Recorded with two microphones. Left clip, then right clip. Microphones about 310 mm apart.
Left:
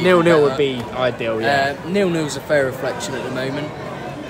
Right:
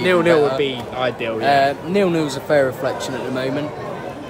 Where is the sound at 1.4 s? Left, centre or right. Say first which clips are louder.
Right 5 dB; centre.